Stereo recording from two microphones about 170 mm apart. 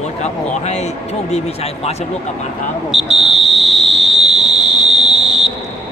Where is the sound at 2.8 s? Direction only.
Centre (ahead or behind).